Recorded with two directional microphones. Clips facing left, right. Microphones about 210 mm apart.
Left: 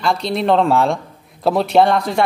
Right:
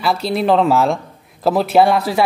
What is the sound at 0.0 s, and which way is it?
Speech, 5° right (ahead or behind).